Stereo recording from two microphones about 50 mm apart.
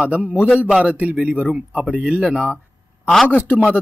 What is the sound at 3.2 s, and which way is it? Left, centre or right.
Speech, left.